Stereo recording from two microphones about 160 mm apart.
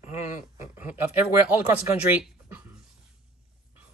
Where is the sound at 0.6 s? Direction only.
10° right (ahead or behind).